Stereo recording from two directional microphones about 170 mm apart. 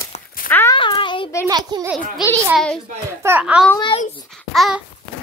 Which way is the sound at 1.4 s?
20° right (ahead or behind).